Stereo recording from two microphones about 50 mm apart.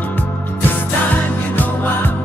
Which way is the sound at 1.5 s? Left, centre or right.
Left.